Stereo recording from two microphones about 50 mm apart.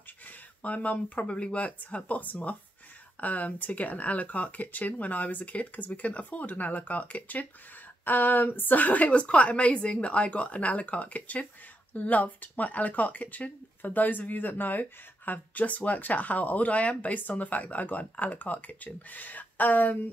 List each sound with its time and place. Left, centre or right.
0.6 s a woman's voice: left